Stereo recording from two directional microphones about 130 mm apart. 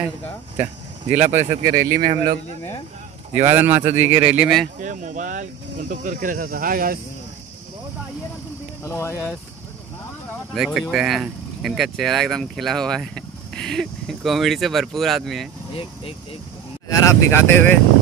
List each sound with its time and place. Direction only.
0.6 s speech: 15° right (ahead or behind)
1.8 s speech: 25° right (ahead or behind)
3.4 s speech: 20° right (ahead or behind)
4.7 s speech: 80° right
8.8 s speech: 25° left (ahead or behind)
10.5 s speech: 5° right (ahead or behind)
16.9 s speech: 20° left (ahead or behind)